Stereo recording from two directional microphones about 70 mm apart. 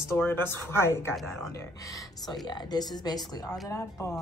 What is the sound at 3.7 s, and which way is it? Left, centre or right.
Speech, left.